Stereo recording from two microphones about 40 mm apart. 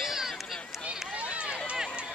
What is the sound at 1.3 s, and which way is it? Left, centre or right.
Run, right.